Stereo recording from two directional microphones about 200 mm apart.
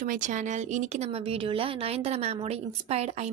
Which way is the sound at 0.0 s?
40° right (ahead or behind).